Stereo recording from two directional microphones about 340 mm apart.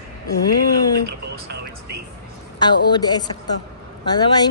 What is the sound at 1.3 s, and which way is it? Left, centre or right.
Music, right.